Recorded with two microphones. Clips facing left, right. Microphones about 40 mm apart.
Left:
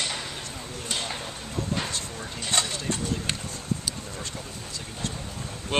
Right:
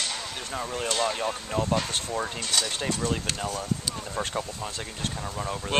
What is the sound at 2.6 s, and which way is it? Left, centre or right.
Speech, left.